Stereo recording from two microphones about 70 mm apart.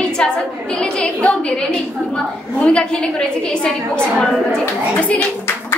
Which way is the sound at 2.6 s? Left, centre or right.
Centre.